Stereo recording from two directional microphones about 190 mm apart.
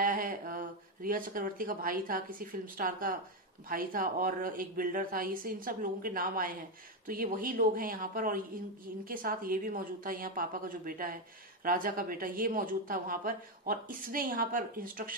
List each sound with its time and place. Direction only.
0.0 s a woman's voice: 50° right (ahead or behind)